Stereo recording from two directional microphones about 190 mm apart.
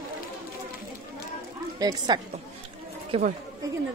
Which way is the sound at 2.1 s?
20° right (ahead or behind).